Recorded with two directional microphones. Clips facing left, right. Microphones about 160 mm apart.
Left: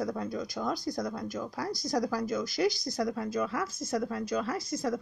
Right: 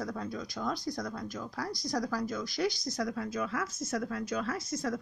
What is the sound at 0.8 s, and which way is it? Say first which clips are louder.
Speech: left 3 dB; 25° left (ahead or behind).